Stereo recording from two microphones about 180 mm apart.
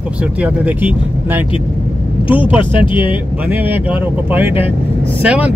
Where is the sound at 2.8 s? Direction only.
30° left (ahead or behind).